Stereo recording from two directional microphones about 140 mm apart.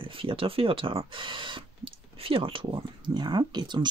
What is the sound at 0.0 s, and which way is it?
Speech, 40° right (ahead or behind).